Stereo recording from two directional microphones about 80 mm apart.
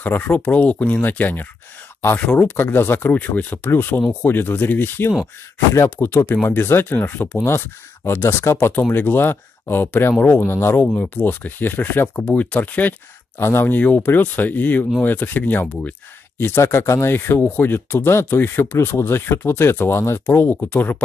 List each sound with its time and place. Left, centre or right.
0.0 s speech: centre
13.4 s speech: left